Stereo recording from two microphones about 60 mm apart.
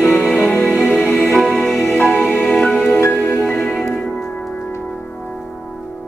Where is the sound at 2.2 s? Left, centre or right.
Centre.